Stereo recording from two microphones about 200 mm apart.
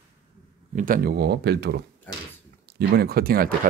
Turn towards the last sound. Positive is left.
turn(degrees=-45)  # may be behind; listen again after turning